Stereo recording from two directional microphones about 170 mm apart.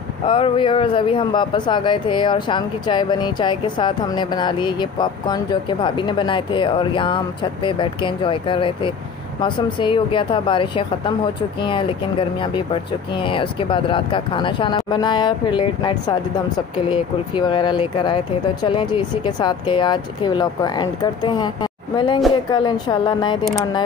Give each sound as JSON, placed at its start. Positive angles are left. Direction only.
{"t": 0.2, "sound": "speech", "side_deg": 30}